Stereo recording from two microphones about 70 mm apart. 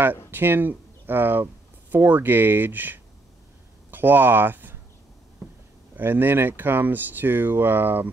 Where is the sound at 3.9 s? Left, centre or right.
Right.